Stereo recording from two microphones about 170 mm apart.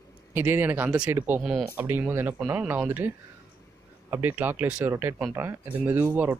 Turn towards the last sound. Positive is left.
turn(degrees=-10)  # may be behind; listen again after turning